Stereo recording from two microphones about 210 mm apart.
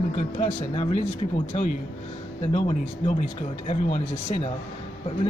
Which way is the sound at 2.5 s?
30° left (ahead or behind).